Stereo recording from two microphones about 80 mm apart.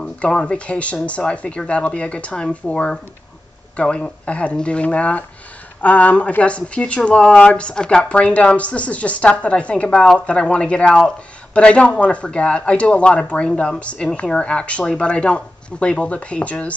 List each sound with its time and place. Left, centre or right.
0.0 s speech: centre